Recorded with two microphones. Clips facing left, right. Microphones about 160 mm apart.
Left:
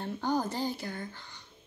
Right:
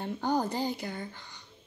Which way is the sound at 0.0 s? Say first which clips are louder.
Right 1 dB; 15° right (ahead or behind).